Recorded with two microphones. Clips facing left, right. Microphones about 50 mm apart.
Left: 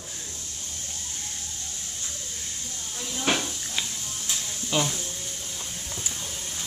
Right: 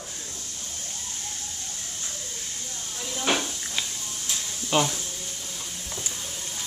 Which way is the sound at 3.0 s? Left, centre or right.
Centre.